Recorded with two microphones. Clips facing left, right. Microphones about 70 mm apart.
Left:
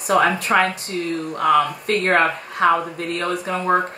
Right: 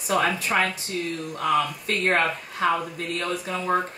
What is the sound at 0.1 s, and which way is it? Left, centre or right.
Speech, left.